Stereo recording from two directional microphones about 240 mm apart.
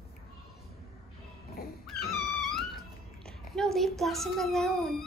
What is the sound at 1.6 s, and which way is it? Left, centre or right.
Dog, left.